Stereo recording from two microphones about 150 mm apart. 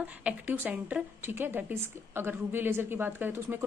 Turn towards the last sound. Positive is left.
turn(degrees=-15)  # may be behind; listen again after turning